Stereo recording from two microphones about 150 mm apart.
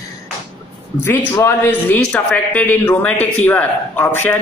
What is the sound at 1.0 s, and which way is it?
A man's voice, 15° left (ahead or behind).